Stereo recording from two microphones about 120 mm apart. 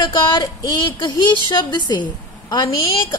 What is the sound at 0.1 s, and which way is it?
A woman's voice, 35° left (ahead or behind).